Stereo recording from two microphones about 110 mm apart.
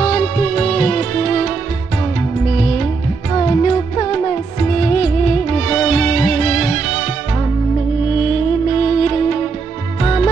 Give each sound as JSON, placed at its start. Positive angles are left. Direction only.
{"t": 0.0, "sound": "music", "side_deg": 45}
{"t": 8.2, "sound": "music", "side_deg": 45}